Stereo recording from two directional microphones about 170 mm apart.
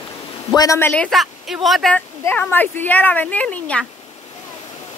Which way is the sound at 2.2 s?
10° left (ahead or behind).